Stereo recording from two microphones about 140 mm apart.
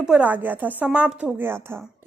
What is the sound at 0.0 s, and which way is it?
Speech, 10° right (ahead or behind).